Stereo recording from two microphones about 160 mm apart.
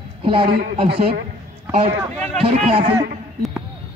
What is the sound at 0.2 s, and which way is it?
Speech, 35° right (ahead or behind).